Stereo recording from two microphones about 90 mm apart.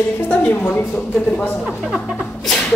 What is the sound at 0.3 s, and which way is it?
A woman's voice, 20° left (ahead or behind).